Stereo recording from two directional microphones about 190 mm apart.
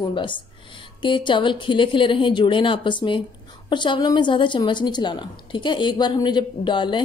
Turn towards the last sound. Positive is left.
turn(degrees=25)  # may be behind; listen again after turning